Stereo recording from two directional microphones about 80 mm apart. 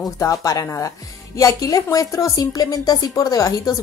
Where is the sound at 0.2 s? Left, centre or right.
Left.